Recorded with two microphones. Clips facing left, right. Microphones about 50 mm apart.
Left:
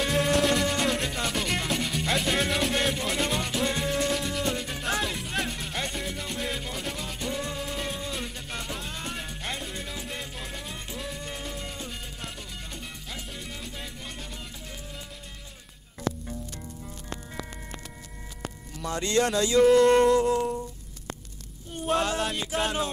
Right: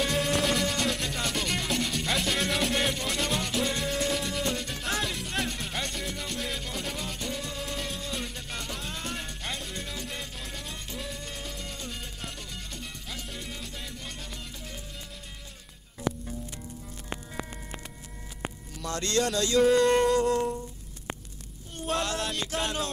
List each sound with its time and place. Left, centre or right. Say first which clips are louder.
0.0 s music: left 3 dB; centre
18.9 s speech: left 3 dB; centre
19.8 s music: left 3 dB; left
20.2 s humming: left 1 dB; centre
22.1 s music: left 3 dB; centre